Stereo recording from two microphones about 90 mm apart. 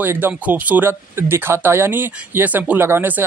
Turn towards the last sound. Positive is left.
turn(degrees=-25)  # may be behind; listen again after turning